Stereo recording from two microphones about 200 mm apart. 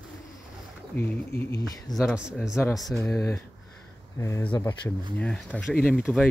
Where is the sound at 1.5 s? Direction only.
20° left (ahead or behind).